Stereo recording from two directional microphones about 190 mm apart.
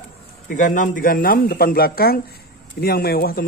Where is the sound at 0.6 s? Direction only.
45° left (ahead or behind).